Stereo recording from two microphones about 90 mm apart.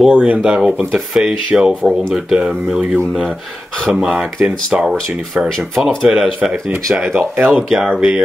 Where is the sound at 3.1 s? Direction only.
5° left (ahead or behind).